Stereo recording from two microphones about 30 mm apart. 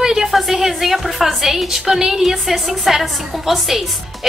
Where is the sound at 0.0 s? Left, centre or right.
Centre.